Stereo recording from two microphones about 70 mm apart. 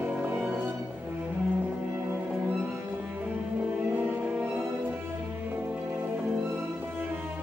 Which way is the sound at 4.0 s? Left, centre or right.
Right.